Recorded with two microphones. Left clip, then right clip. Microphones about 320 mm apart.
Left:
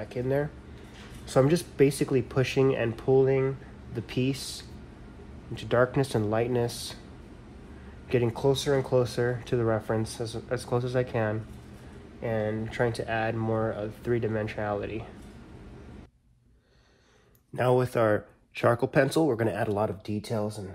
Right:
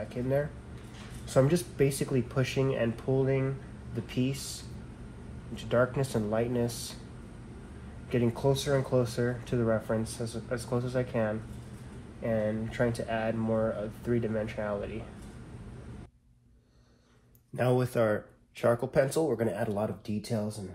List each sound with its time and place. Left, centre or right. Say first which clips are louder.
0.1 s speech: left 3 dB; left
8.1 s speech: left 3 dB; left
17.6 s speech: left 3 dB; left